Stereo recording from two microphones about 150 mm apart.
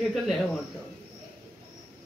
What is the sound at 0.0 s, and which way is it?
Speech, centre (ahead or behind).